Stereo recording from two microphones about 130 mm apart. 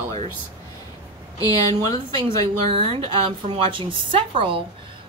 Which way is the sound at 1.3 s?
30° left (ahead or behind).